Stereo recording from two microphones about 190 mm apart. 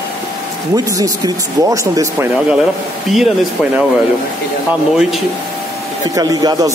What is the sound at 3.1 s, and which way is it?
Speech, 5° right (ahead or behind).